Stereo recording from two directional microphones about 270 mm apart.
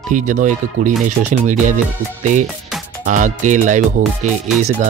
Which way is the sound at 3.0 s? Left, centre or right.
Right.